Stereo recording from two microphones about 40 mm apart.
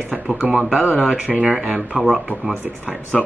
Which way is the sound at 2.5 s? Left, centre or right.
Right.